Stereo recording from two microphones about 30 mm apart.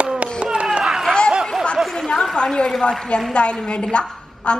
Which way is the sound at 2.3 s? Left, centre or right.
Left.